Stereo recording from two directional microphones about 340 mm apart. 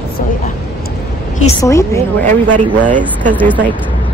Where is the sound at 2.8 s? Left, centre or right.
Right.